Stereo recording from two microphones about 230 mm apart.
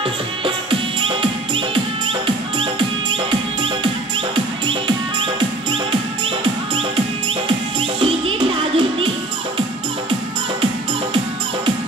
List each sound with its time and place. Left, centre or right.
0.7 s music: right
8.0 s music: right